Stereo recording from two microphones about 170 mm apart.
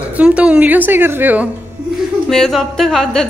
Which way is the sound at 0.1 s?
5° right (ahead or behind).